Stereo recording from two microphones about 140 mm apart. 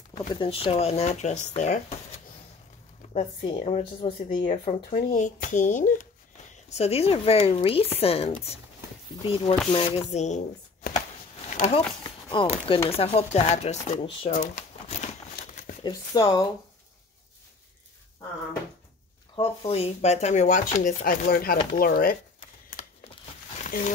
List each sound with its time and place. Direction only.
0.3 s speech: 40° left (ahead or behind); by 2.0 s 55° left (ahead or behind)
3.1 s speech: 45° left (ahead or behind); by 5.9 s 70° left (ahead or behind)
6.7 s speech: 45° left (ahead or behind)
10.8 s a sound: 90° left
11.4 s a sound: 55° left (ahead or behind)
12.6 s speech: 40° left (ahead or behind)
14.3 s crumpling: 60° left (ahead or behind)
15.8 s speech: 30° left (ahead or behind)
19.3 s speech: 40° left (ahead or behind); by 22.1 s 90° left
23.6 s a sound: 65° left (ahead or behind)